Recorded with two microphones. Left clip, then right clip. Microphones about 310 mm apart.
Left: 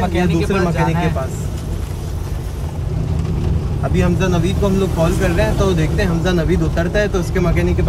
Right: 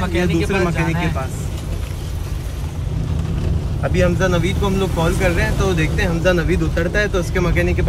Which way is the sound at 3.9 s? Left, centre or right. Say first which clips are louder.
Right 2 dB; centre.